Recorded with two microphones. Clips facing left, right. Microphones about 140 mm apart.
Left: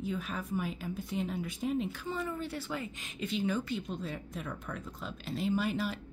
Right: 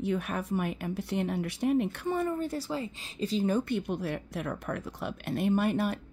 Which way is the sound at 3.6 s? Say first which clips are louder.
Right 6 dB; 65° right (ahead or behind).